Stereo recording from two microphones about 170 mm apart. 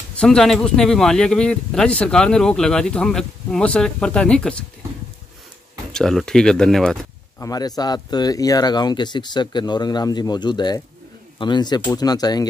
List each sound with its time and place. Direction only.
0.1 s speech: 5° left (ahead or behind)
5.9 s speech: 5° left (ahead or behind)
7.3 s speech: 20° left (ahead or behind)